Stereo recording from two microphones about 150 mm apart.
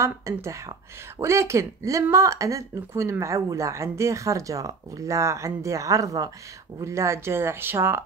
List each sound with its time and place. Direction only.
0.0 s speech: 20° right (ahead or behind)